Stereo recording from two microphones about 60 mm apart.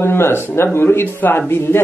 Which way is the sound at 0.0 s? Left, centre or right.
Left.